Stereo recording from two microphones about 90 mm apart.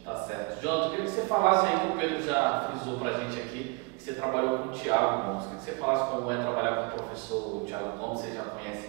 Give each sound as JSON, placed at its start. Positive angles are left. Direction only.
{"t": 0.7, "sound": "a man's voice", "side_deg": -15}